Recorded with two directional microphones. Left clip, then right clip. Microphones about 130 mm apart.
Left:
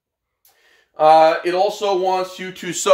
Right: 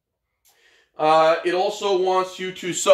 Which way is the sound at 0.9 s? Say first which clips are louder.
Left 5 dB; 75° left (ahead or behind).